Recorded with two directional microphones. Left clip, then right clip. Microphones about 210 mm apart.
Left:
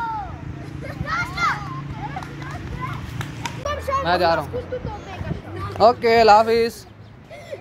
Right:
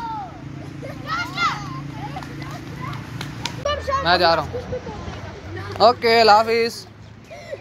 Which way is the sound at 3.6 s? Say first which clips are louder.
Right 1 dB; 60° left (ahead or behind).